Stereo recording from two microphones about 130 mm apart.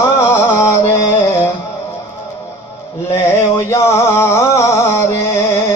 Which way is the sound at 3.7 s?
20° left (ahead or behind).